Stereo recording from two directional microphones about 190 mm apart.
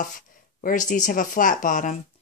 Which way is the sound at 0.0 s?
45° left (ahead or behind).